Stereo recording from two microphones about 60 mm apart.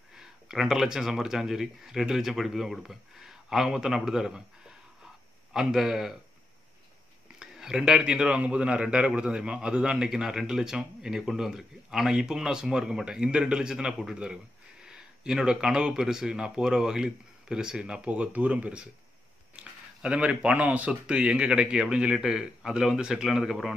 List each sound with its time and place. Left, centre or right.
0.1 s a man's voice: centre
5.5 s a man's voice: centre
7.3 s a man's voice: centre